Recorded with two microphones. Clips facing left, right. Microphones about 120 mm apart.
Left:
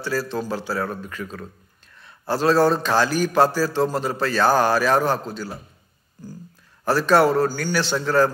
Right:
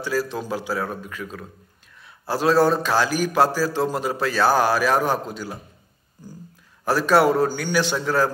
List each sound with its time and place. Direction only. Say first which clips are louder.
0.0 s a man's voice: even; 15° right (ahead or behind)
6.9 s a man's voice: even; 10° right (ahead or behind)